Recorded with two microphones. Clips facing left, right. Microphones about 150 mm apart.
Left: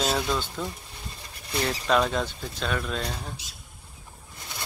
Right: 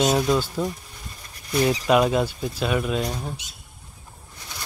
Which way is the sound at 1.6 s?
10° right (ahead or behind).